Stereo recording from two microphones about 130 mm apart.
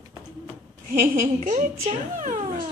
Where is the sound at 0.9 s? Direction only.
85° right.